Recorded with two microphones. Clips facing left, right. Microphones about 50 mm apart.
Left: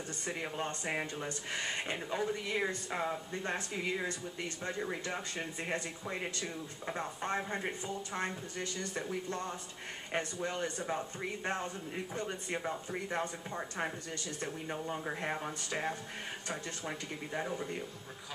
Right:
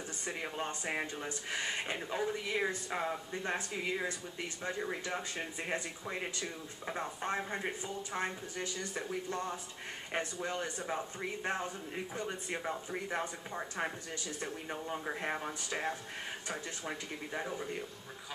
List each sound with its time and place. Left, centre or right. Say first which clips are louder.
0.2 s speech: left 1 dB; centre